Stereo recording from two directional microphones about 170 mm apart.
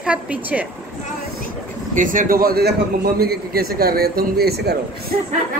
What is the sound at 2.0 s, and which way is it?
A man's voice, 50° right (ahead or behind).